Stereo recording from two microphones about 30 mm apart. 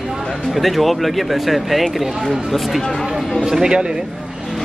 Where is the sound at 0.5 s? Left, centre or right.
Centre.